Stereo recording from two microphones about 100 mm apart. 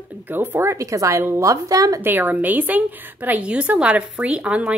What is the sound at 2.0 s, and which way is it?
A woman's voice, 20° right (ahead or behind).